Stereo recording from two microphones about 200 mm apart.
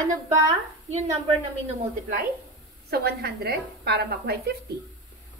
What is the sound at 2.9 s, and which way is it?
A woman's voice, 50° right (ahead or behind).